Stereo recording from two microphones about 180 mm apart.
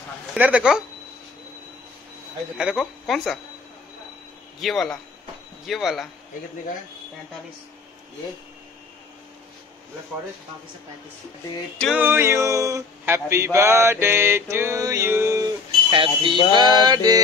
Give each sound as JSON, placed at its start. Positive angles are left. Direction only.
{"t": 0.3, "sound": "speech", "side_deg": -5}
{"t": 2.5, "sound": "speech", "side_deg": -5}
{"t": 4.6, "sound": "speech", "side_deg": 0}
{"t": 12.0, "sound": "male singing", "side_deg": -15}
{"t": 15.9, "sound": "speech", "side_deg": -30}
{"t": 16.5, "sound": "mantra", "side_deg": -25}